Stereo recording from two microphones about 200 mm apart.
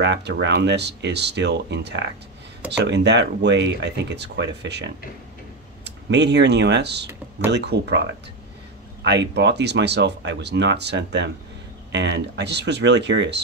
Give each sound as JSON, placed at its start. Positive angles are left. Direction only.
{"t": 0.0, "sound": "speech", "side_deg": -60}